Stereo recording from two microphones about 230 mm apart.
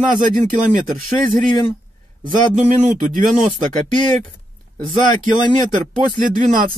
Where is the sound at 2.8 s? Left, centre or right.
Right.